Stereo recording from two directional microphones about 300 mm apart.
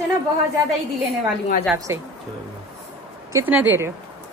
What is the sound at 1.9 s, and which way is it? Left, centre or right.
Speech, centre.